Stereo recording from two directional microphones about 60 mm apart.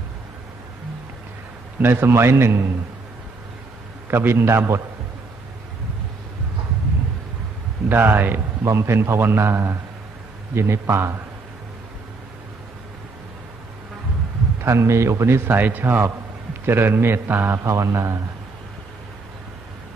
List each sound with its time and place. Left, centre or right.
1.8 s a man's voice: right
4.1 s a man's voice: right
7.9 s a man's voice: right
8.7 s a man's voice: right
14.6 s a man's voice: right
17.6 s a man's voice: right